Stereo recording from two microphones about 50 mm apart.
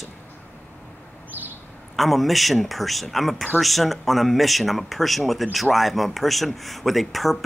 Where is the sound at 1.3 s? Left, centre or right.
Right.